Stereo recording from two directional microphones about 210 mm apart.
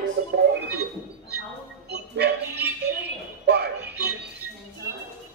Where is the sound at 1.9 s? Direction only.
50° right (ahead or behind).